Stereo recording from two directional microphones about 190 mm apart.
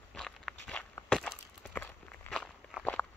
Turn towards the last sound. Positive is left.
turn(degrees=5)  # may be behind; listen again after turning